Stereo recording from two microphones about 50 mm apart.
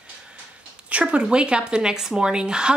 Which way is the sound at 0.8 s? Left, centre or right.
Right.